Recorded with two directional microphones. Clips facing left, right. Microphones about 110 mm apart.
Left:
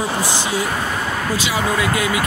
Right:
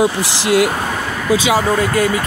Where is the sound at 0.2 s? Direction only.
85° right.